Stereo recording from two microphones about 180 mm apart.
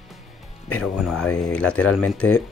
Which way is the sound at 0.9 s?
Centre (ahead or behind).